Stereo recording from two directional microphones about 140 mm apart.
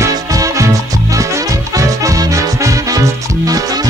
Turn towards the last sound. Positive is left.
turn(degrees=-25)  # may be behind; listen again after turning